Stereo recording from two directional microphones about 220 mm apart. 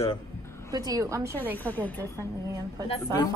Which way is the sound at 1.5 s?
10° left (ahead or behind).